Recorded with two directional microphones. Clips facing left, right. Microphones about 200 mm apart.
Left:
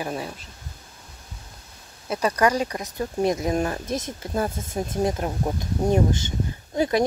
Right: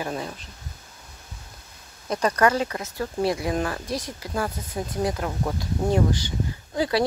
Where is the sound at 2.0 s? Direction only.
10° left (ahead or behind).